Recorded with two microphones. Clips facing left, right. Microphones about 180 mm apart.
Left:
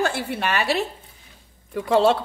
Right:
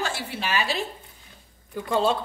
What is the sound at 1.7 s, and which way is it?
Speech, 75° left (ahead or behind).